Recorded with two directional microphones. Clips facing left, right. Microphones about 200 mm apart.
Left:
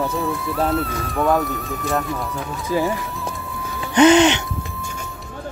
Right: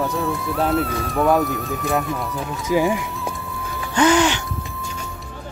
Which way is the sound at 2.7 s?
15° right (ahead or behind).